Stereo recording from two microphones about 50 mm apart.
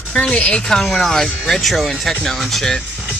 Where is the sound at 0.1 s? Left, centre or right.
Left.